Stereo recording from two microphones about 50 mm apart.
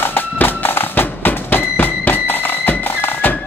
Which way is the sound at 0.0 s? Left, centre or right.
Left.